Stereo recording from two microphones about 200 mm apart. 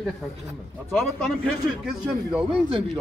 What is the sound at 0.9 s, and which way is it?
A man's voice, centre (ahead or behind).